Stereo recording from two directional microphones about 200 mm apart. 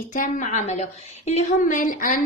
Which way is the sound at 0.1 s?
40° left (ahead or behind).